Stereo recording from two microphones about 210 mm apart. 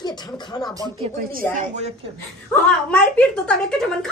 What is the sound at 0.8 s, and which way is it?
Speech, 25° right (ahead or behind).